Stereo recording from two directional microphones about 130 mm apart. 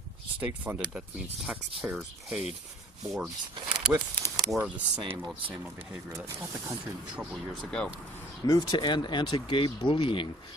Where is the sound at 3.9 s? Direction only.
15° right (ahead or behind).